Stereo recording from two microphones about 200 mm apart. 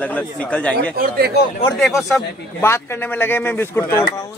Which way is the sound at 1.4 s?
55° left (ahead or behind).